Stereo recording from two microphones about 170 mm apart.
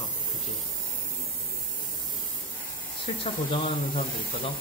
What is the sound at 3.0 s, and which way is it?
Speech, 30° left (ahead or behind).